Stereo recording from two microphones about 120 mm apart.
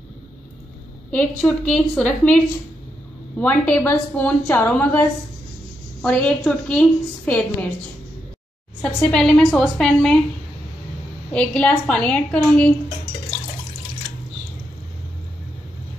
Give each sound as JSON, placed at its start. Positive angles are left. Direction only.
{"t": 1.1, "sound": "a woman's voice", "side_deg": 10}
{"t": 6.0, "sound": "a woman's voice", "side_deg": 10}
{"t": 8.8, "sound": "a woman's voice", "side_deg": 5}
{"t": 11.3, "sound": "a woman's voice", "side_deg": 10}